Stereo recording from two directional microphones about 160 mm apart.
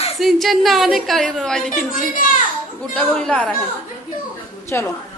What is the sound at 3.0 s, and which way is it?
Speech, 5° left (ahead or behind).